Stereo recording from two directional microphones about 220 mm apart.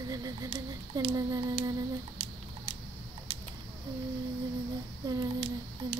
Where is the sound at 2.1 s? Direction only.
25° right (ahead or behind).